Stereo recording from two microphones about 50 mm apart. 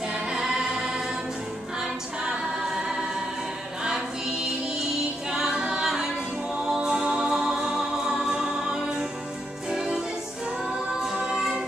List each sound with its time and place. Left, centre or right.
0.1 s choir: centre
5.3 s music: centre
9.7 s music: centre
11.1 s music: centre